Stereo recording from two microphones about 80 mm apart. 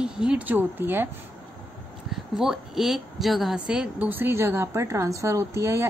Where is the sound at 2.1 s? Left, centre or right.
Centre.